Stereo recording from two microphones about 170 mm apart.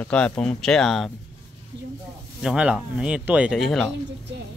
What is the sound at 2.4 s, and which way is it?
Speech, 5° right (ahead or behind).